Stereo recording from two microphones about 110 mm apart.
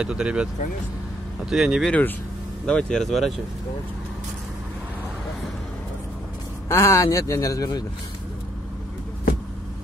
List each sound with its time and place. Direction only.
0.0 s speech: 10° right (ahead or behind)
1.9 s speech: 15° left (ahead or behind)
6.7 s speech: 25° left (ahead or behind)